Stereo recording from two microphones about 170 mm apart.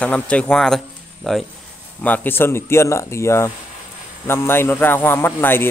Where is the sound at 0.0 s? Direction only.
5° left (ahead or behind).